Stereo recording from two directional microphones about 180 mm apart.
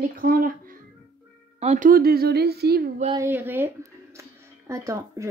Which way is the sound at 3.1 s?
10° right (ahead or behind).